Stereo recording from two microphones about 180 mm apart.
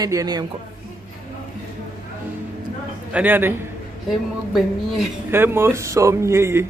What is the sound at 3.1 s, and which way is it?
Speech, 10° right (ahead or behind).